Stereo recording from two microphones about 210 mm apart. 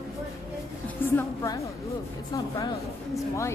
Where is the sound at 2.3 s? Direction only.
15° left (ahead or behind).